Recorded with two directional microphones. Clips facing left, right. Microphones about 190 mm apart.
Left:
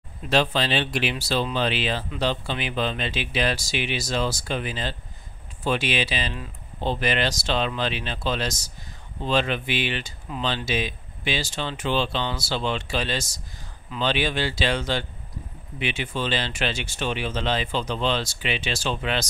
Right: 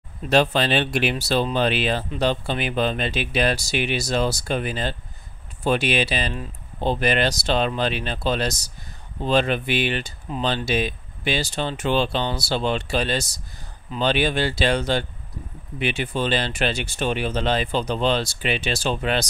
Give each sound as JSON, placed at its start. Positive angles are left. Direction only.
{"t": 0.3, "sound": "speech", "side_deg": -50}